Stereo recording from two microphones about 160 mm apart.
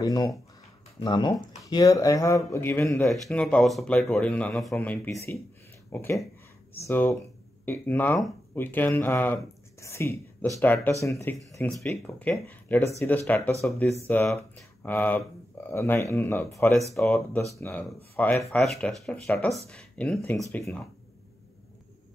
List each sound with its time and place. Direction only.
0.0 s speech: 25° left (ahead or behind)
3.1 s speech: 5° left (ahead or behind)
11.5 s speech: 10° left (ahead or behind)